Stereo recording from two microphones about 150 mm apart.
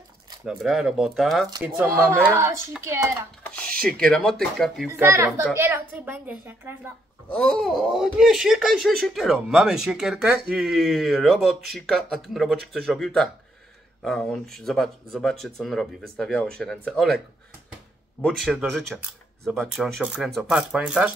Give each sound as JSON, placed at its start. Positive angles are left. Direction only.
{"t": 0.5, "sound": "speech", "side_deg": 0}
{"t": 1.9, "sound": "a woman's voice", "side_deg": -15}
{"t": 3.4, "sound": "a sound", "side_deg": 5}
{"t": 3.8, "sound": "speech", "side_deg": 5}
{"t": 5.0, "sound": "a woman's voice", "side_deg": -20}
{"t": 7.2, "sound": "speech", "side_deg": 5}
{"t": 18.2, "sound": "speech", "side_deg": 0}